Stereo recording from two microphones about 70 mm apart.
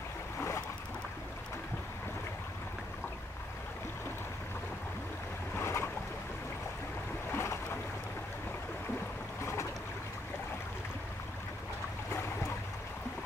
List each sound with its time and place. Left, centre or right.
5.6 s boat: left
7.2 s boat: left
9.4 s boat: left